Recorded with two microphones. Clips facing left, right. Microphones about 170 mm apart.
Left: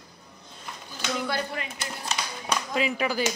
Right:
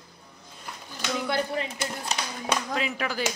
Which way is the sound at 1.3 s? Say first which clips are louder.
Right 3 dB; 25° right (ahead or behind).